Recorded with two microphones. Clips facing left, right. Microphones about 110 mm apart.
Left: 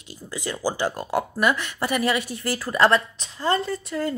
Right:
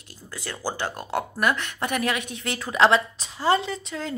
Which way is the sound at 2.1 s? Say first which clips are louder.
Left 4 dB; 60° right (ahead or behind).